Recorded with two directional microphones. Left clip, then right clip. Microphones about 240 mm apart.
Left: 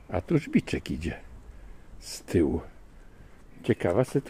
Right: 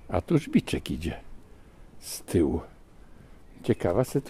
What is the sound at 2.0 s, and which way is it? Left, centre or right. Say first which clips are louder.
Speech: even; centre.